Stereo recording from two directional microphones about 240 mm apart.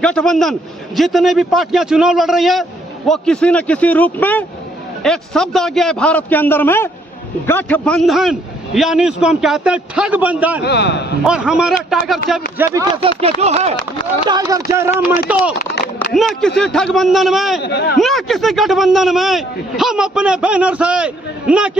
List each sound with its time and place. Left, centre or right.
0.0 s speech: centre
10.6 s a man's voice: left
11.2 s speech: centre
12.7 s a sound: centre
14.2 s speech: centre
17.6 s a man's voice: left
17.9 s speech: centre